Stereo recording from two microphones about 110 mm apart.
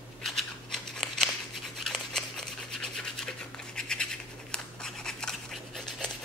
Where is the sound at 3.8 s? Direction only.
5° left (ahead or behind).